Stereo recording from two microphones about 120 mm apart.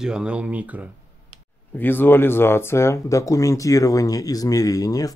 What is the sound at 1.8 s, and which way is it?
Speech, 15° left (ahead or behind).